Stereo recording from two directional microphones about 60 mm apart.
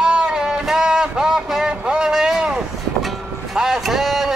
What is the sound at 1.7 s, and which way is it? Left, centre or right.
Vehicle, centre.